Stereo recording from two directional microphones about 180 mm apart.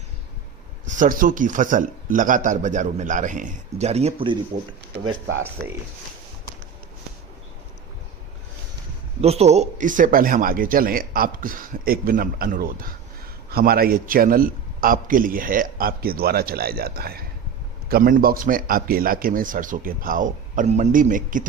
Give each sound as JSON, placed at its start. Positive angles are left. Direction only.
{"t": 0.8, "sound": "speech", "side_deg": -45}
{"t": 9.2, "sound": "a man's voice", "side_deg": -35}